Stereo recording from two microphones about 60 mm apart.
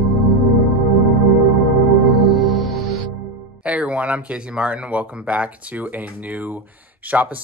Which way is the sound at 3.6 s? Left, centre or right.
Right.